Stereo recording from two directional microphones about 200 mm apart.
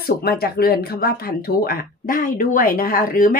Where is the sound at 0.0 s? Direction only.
50° left (ahead or behind).